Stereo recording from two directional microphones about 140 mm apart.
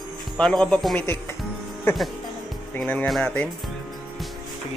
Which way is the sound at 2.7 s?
10° left (ahead or behind).